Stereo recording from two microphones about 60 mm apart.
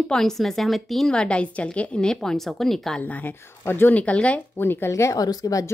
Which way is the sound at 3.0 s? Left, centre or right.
Left.